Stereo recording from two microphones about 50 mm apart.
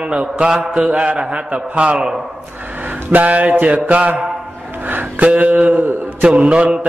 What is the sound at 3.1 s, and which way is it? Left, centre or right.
Mantra, right.